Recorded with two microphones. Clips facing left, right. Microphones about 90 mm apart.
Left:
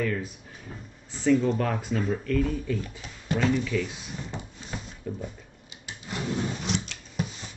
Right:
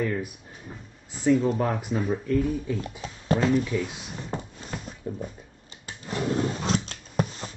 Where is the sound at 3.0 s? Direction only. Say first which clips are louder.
Right 4 dB; 35° right (ahead or behind).